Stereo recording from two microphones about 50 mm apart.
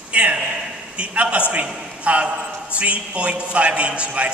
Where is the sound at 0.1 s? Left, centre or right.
Right.